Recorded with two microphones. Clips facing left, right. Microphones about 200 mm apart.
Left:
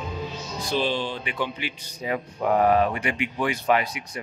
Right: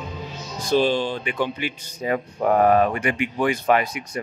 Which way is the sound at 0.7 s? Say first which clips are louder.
Right 6 dB; 45° right (ahead or behind).